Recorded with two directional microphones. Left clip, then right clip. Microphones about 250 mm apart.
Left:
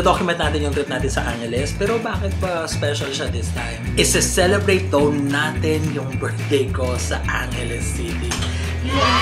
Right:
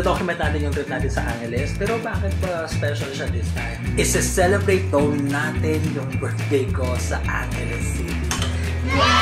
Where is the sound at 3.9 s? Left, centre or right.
Centre.